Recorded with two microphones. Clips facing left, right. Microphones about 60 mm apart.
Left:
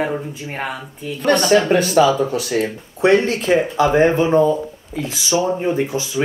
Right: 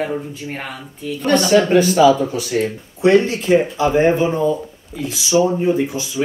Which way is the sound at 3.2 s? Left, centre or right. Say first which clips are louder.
Right 1 dB; left.